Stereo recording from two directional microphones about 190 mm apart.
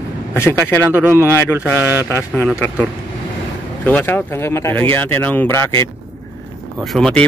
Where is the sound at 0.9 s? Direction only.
10° right (ahead or behind).